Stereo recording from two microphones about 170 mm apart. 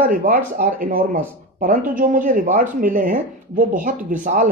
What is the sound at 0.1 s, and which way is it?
Speech, 50° right (ahead or behind).